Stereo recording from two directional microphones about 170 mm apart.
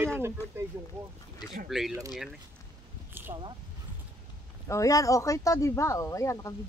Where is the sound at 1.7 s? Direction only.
Centre (ahead or behind).